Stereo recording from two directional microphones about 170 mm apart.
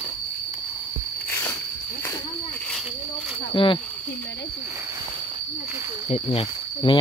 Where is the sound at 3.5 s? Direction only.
30° left (ahead or behind).